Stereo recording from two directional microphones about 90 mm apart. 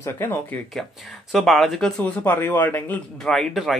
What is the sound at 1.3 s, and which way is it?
Speech, centre (ahead or behind).